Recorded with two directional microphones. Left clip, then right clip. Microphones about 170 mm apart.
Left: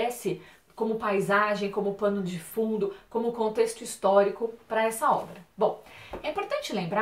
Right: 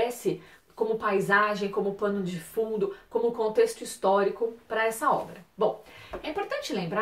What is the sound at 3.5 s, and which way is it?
A woman's voice, centre (ahead or behind).